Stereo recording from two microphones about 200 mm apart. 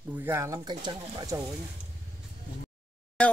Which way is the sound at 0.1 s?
10° right (ahead or behind).